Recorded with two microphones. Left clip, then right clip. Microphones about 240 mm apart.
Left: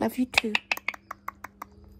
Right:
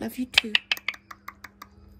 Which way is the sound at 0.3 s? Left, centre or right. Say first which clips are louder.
Right 6 dB; centre.